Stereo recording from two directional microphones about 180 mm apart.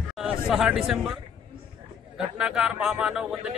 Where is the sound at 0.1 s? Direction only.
5° right (ahead or behind).